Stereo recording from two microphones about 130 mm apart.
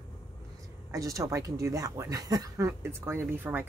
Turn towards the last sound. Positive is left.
turn(degrees=-15)  # may be behind; listen again after turning